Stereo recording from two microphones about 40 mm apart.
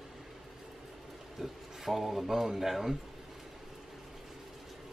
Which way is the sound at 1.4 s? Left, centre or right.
Centre.